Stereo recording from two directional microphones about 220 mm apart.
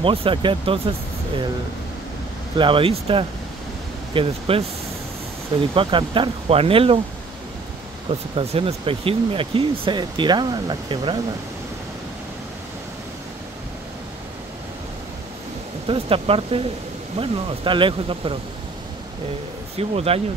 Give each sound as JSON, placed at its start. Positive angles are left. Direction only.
{"t": 0.0, "sound": "speech", "side_deg": -25}
{"t": 2.5, "sound": "speech", "side_deg": -25}
{"t": 5.8, "sound": "speech", "side_deg": -20}
{"t": 8.1, "sound": "speech", "side_deg": -25}
{"t": 15.9, "sound": "speech", "side_deg": -25}
{"t": 19.8, "sound": "speech", "side_deg": -25}